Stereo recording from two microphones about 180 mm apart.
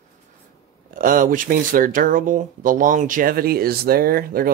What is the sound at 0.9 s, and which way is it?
Speech, 50° right (ahead or behind).